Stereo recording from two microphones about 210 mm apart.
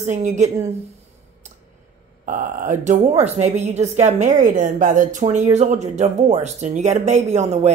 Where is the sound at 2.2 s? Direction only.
40° right (ahead or behind).